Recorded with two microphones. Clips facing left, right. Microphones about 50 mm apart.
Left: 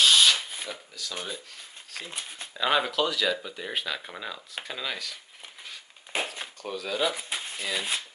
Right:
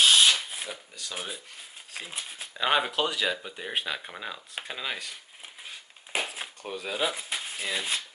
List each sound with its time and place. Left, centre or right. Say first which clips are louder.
0.0 s shuffling cards: even; centre
0.4 s shuffling cards: even; centre
1.1 s speech: even; centre
4.9 s speech: left 1 dB; right
6.1 s a sound: even; centre
6.6 s speech: left 2 dB; centre